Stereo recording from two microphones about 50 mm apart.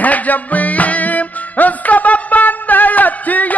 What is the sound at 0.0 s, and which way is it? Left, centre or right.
Music, left.